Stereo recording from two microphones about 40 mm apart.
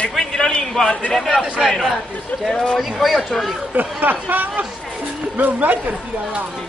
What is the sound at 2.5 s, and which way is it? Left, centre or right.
Speech, centre.